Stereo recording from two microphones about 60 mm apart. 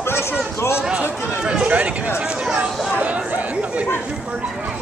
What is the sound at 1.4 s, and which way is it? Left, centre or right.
Speech, centre.